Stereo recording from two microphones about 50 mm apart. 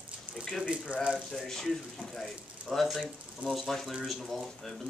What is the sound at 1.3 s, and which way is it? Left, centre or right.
A woman's voice, centre.